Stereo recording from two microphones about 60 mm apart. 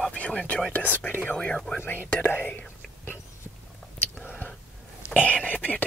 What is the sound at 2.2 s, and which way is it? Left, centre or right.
Speech, left.